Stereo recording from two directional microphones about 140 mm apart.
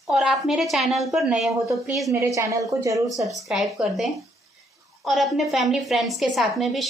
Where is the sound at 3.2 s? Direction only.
Centre (ahead or behind).